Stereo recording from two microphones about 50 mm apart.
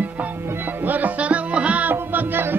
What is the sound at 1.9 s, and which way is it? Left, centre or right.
Music, right.